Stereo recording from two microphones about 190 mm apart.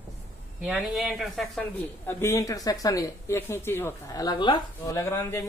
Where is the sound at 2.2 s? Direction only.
15° left (ahead or behind).